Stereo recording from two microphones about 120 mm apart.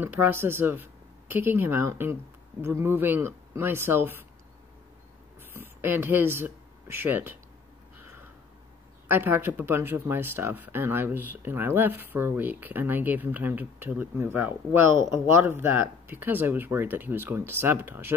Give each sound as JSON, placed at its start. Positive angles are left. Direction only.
{"t": 0.0, "sound": "speech", "side_deg": -15}
{"t": 5.4, "sound": "speech", "side_deg": -20}
{"t": 9.0, "sound": "speech", "side_deg": -15}